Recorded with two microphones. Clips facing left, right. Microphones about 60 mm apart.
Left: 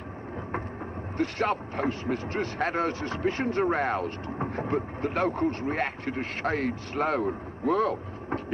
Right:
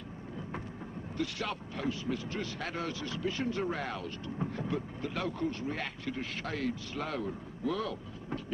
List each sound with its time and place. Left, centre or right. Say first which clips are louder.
1.1 s speech: left 9 dB; left